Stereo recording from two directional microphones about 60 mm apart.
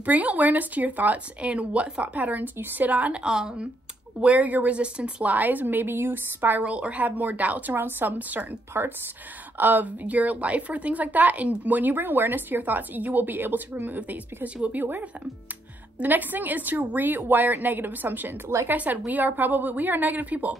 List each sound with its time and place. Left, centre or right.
0.0 s a woman's voice: right
4.2 s a woman's voice: right
6.6 s a woman's voice: right
9.6 s a woman's voice: right
16.0 s a woman's voice: right